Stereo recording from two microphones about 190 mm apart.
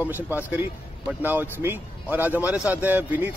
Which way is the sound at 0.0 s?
10° right (ahead or behind).